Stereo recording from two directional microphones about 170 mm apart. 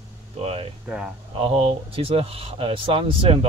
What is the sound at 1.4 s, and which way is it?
Speech, 35° right (ahead or behind).